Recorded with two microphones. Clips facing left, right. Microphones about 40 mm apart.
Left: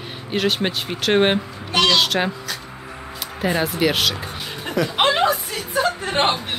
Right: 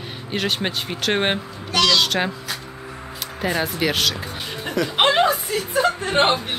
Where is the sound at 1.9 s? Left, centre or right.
Centre.